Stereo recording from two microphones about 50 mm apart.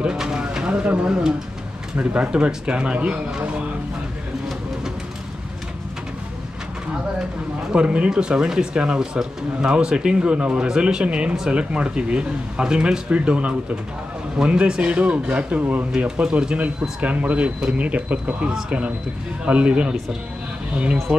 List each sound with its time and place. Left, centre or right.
0.0 s bird: centre
2.3 s speech: centre
7.7 s speech: right
17.0 s speech: right